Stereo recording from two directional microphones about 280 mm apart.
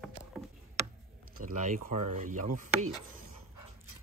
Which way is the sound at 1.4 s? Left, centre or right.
Right.